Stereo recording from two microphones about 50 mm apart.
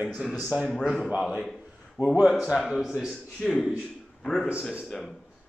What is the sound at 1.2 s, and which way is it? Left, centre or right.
Speech, centre.